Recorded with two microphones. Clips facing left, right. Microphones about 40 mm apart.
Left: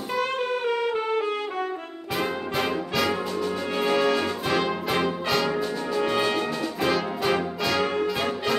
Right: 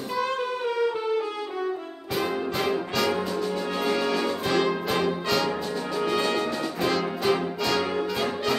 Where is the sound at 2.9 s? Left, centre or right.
Centre.